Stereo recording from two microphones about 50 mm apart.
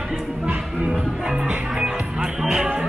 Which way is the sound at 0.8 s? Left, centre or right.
Centre.